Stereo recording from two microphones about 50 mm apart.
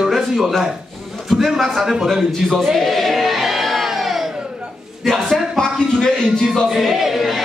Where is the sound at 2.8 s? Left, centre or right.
Centre.